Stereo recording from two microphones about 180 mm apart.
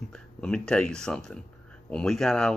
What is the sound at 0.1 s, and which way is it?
Speech, 5° left (ahead or behind).